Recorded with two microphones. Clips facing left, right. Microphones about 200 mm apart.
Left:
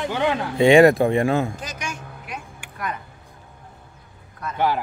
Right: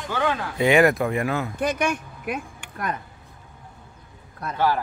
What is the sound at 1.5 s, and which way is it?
Speech, 60° right (ahead or behind).